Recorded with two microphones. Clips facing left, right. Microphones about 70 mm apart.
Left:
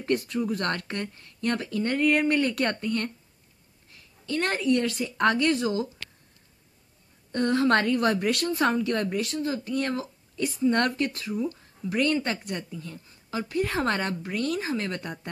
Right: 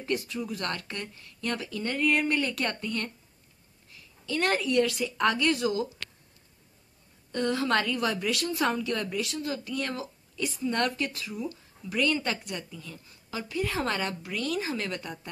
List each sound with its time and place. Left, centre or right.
0.0 s speech: left
4.6 s speech: left
7.3 s speech: left
15.0 s speech: left